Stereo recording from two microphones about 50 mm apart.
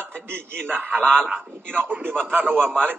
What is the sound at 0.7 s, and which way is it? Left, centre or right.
A man's voice, right.